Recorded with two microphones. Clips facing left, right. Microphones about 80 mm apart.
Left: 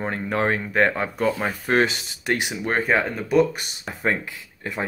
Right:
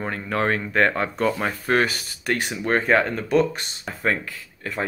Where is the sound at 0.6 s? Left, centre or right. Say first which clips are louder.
Even; centre.